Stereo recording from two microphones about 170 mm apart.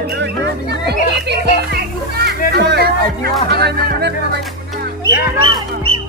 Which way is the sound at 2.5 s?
75° right (ahead or behind).